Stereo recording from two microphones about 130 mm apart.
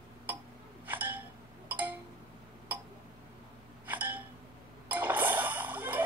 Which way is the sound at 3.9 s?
10° right (ahead or behind).